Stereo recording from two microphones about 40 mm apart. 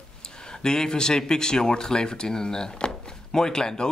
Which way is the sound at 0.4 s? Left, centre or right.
Centre.